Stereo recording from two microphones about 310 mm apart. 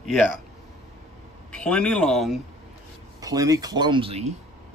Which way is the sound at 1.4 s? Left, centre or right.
Centre.